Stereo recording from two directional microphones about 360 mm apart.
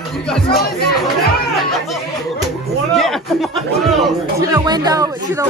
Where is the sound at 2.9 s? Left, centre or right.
Centre.